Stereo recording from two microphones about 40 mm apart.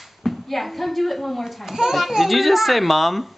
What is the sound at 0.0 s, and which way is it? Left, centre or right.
A child's voice, centre.